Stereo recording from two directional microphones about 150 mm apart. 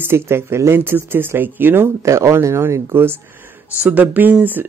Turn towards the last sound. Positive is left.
turn(degrees=-10)  # may be behind; listen again after turning